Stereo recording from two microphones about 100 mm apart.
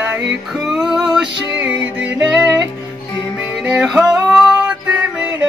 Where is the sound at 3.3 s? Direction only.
10° right (ahead or behind).